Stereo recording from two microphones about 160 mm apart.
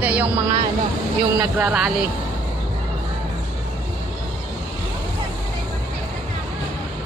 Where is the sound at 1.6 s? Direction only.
5° right (ahead or behind).